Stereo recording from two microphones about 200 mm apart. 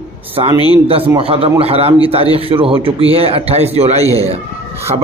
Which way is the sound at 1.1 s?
30° right (ahead or behind).